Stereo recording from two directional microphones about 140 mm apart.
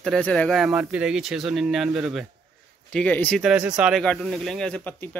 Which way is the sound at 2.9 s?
10° left (ahead or behind).